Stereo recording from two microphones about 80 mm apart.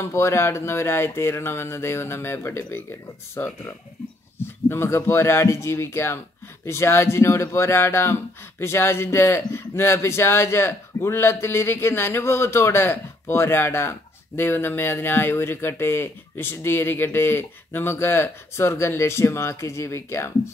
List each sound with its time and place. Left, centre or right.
0.0 s speech: left